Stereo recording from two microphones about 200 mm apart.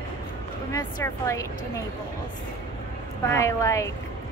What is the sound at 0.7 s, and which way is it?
A woman's voice, 15° left (ahead or behind).